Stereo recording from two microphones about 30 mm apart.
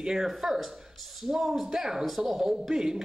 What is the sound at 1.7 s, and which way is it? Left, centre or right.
Speech, centre.